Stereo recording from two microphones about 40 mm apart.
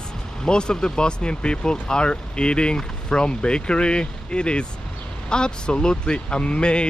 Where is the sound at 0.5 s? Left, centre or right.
Left.